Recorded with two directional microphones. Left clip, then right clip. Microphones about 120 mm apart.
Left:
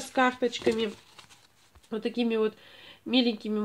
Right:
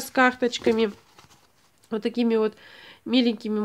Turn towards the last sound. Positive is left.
turn(degrees=-35)  # may be behind; listen again after turning